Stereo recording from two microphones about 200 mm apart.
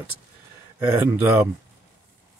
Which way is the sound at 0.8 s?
10° right (ahead or behind).